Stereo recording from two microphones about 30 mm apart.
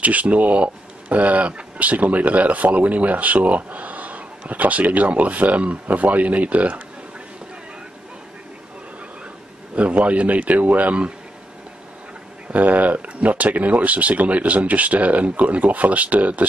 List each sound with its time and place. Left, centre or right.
0.0 s speech: right
9.8 s speech: right
12.5 s speech: right